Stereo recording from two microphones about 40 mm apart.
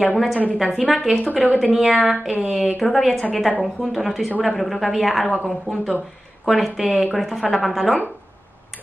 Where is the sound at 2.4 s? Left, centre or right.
Centre.